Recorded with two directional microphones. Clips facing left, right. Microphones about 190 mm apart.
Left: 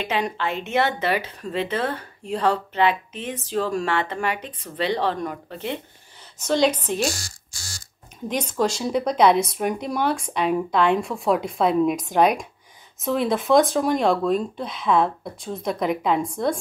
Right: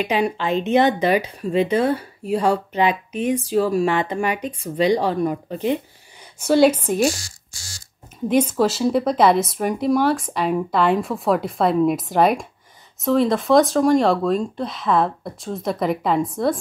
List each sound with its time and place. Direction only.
0.0 s speech: 10° right (ahead or behind)
7.2 s speech: 45° left (ahead or behind)
8.3 s speech: 5° right (ahead or behind)